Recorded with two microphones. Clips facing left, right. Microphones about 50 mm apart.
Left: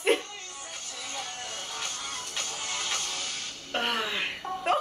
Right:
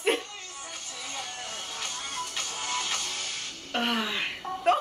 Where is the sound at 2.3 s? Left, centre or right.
Centre.